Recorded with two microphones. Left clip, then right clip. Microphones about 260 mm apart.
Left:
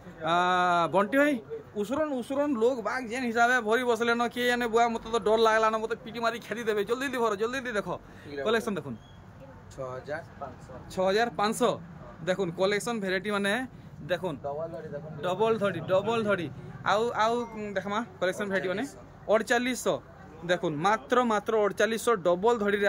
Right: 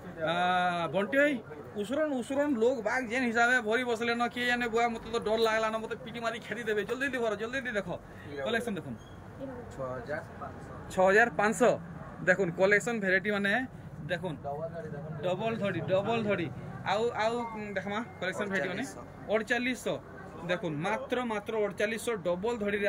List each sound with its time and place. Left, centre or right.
0.2 s speech: centre
11.0 s speech: centre